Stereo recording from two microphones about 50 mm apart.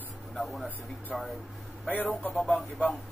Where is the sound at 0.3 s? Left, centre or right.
Centre.